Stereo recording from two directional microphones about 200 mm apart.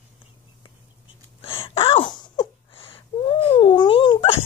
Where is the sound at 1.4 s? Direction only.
25° left (ahead or behind).